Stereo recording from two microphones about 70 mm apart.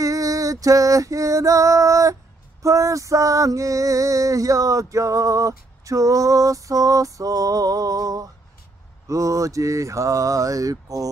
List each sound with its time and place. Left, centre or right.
0.0 s female singing: right
2.6 s music: right
9.0 s music: right